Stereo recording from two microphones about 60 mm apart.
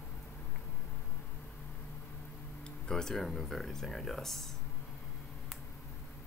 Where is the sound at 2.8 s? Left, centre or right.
Centre.